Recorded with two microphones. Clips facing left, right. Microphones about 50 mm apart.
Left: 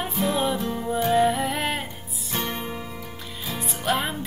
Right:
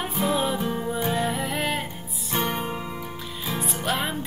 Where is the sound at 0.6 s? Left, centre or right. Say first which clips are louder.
Right 1 dB; centre.